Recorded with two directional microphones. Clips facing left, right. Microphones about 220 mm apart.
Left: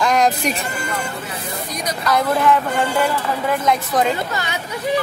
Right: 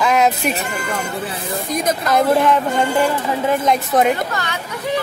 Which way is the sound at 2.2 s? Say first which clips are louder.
Right 3 dB; 25° right (ahead or behind).